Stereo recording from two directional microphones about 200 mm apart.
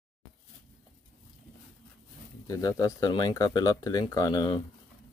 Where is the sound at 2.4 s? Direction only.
15° left (ahead or behind).